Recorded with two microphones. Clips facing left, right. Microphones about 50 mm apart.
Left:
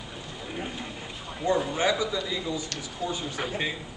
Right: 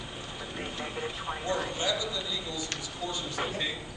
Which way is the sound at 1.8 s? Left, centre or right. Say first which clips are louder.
Left 6 dB; left.